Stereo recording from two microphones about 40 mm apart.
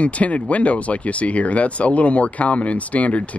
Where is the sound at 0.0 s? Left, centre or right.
Left.